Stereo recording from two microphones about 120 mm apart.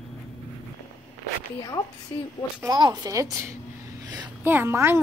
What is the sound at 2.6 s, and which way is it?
A woman's voice, 35° right (ahead or behind).